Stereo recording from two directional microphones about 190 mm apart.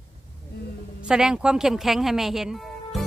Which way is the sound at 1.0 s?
5° right (ahead or behind).